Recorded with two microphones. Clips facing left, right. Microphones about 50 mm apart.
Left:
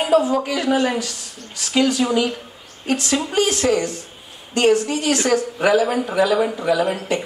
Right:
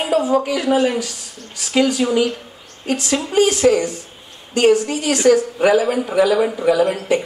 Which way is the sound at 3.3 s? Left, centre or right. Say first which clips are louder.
Right 5 dB; centre.